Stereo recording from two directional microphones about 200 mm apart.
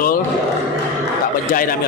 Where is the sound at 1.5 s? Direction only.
45° left (ahead or behind).